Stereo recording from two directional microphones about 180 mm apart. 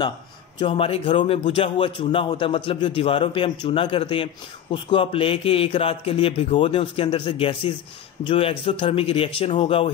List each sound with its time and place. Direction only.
0.6 s speech: 30° left (ahead or behind)